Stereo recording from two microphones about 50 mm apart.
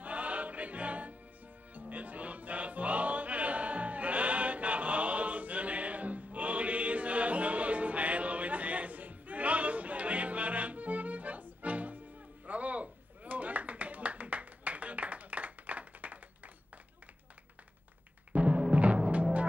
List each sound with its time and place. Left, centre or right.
0.0 s music: right
12.4 s a sound: right
18.3 s timpani: right